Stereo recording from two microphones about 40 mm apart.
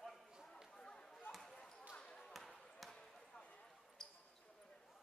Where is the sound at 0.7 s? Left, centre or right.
Centre.